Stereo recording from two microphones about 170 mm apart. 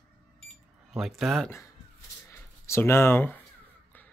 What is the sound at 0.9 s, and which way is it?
Speech, centre (ahead or behind).